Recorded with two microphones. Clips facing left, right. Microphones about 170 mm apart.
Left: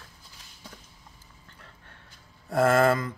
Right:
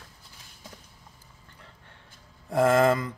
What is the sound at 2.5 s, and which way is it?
Speech, 15° right (ahead or behind).